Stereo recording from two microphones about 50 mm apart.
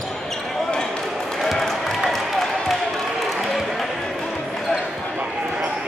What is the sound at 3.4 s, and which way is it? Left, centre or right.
Basketball bounce, centre.